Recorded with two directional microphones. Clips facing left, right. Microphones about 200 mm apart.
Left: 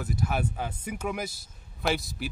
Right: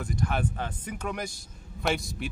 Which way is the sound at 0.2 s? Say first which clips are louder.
Right 1 dB; 5° left (ahead or behind).